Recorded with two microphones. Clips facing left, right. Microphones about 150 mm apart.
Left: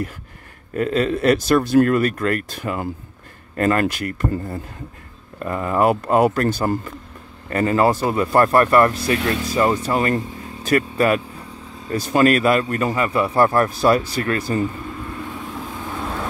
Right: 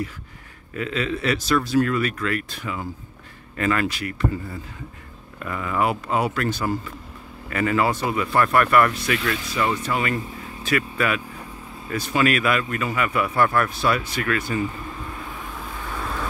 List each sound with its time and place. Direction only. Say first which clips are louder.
0.7 s speech: left 6 dB; 45° left (ahead or behind)